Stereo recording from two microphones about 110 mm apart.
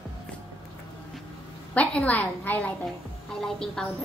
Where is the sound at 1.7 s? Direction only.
15° left (ahead or behind).